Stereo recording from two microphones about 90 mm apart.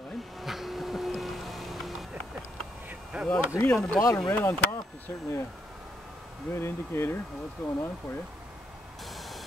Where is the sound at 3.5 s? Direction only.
30° left (ahead or behind).